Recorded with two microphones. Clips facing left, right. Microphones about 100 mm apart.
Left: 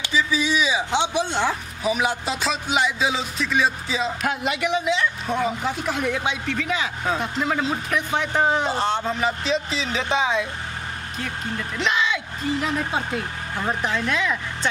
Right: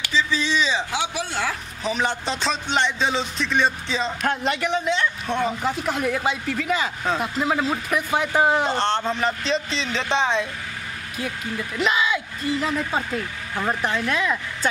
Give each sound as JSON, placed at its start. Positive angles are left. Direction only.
{"t": 0.1, "sound": "speech", "side_deg": 10}
{"t": 0.9, "sound": "speech", "side_deg": 25}
{"t": 1.8, "sound": "speech", "side_deg": 10}
{"t": 11.8, "sound": "speech", "side_deg": -5}
{"t": 13.8, "sound": "speech", "side_deg": 0}